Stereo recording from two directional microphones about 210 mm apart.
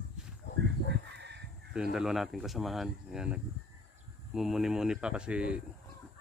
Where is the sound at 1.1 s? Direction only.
55° right (ahead or behind).